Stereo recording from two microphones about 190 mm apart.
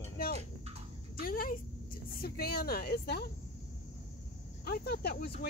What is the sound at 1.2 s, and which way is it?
Speech, 50° left (ahead or behind).